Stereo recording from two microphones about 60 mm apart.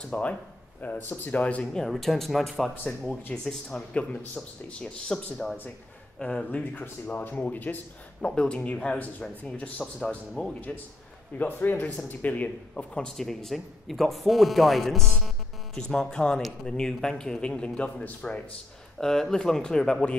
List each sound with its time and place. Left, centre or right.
0.1 s speech: left
1.7 s speech: centre
3.9 s a man's voice: left
6.7 s speech: left
8.2 s a man's voice: centre
9.9 s a man's voice: centre
11.3 s a man's voice: left
12.9 s a man's voice: centre
18.9 s a man's voice: centre